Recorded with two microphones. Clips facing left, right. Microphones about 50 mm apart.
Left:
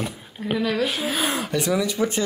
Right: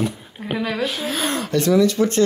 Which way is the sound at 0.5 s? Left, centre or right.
Centre.